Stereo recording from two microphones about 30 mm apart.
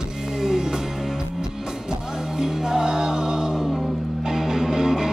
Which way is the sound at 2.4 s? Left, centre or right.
Centre.